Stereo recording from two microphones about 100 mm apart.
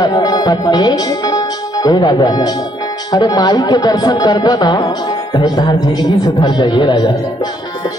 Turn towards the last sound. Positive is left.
turn(degrees=45)  # may be behind; listen again after turning